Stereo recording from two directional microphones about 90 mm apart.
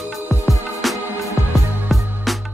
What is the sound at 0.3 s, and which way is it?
Music, centre (ahead or behind).